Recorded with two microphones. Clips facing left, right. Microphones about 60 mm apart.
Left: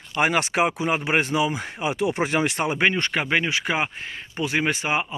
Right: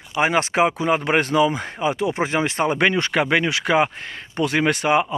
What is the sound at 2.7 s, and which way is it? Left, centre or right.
Speech, right.